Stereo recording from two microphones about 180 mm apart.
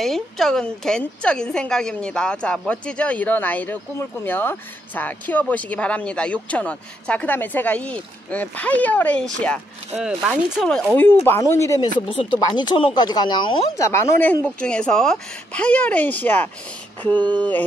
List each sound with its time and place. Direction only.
0.0 s a woman's voice: centre (ahead or behind)
9.9 s a woman's voice: 5° right (ahead or behind); by 11.9 s 15° left (ahead or behind)
12.1 s a woman's voice: 30° left (ahead or behind); by 17.6 s 10° left (ahead or behind)